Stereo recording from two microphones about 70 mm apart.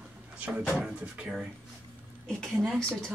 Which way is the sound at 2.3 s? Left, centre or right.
Centre.